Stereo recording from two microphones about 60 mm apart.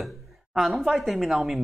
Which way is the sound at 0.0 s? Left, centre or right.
Centre.